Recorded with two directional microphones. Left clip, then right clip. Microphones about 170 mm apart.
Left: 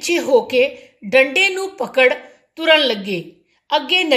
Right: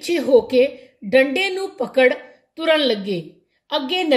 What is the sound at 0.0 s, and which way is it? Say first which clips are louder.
A woman's voice: left 1 dB; 40° right (ahead or behind).